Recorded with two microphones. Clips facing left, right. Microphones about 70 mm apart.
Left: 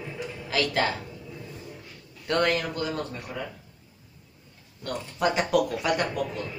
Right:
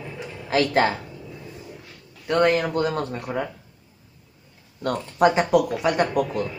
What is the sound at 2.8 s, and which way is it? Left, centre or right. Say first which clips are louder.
Speech: right 7 dB; right.